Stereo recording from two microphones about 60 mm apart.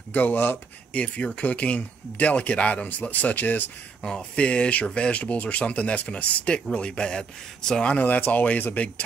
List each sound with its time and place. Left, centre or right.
0.1 s speech: left
0.9 s speech: centre
4.0 s speech: centre